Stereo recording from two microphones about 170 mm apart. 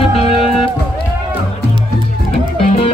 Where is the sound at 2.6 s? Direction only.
35° left (ahead or behind).